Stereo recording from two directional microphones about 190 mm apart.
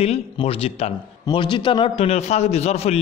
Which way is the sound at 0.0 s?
30° left (ahead or behind).